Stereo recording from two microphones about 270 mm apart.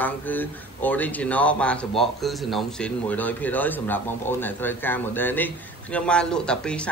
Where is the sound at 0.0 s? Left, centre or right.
Centre.